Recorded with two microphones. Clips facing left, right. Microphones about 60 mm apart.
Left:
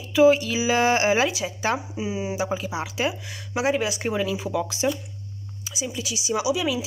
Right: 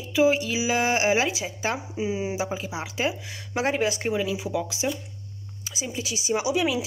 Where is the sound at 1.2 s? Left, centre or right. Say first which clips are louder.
Left 3 dB; right.